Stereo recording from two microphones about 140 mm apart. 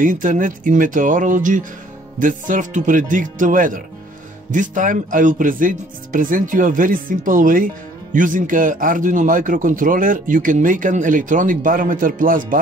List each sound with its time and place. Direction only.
0.0 s speech: 75° right (ahead or behind)